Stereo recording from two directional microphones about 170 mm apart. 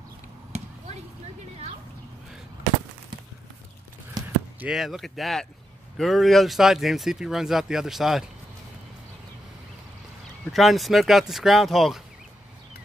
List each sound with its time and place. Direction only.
0.5 s basketball bounce: 40° right (ahead or behind)
4.6 s speech: 5° right (ahead or behind)
10.5 s speech: centre (ahead or behind)